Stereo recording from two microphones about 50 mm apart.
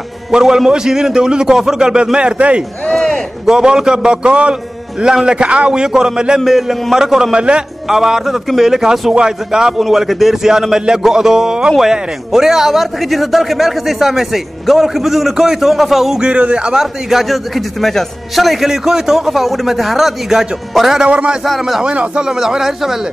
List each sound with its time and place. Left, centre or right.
0.3 s a man's voice: centre
2.9 s a sound: centre
3.4 s a man's voice: centre
6.4 s a man's voice: centre
7.9 s a man's voice: centre
9.1 s a man's voice: centre
16.2 s speech: right
16.8 s a man's voice: centre
21.0 s speech: right
21.5 s a man's voice: centre
21.8 s speech: right
22.2 s a man's voice: centre